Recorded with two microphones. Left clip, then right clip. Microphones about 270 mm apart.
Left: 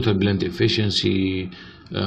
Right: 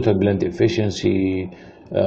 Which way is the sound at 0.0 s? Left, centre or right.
Left.